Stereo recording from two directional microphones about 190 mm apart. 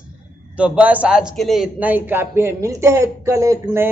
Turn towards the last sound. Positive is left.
turn(degrees=-15)  # may be behind; listen again after turning